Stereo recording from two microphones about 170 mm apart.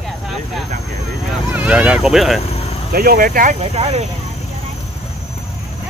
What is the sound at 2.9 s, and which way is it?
Speech, 60° right (ahead or behind).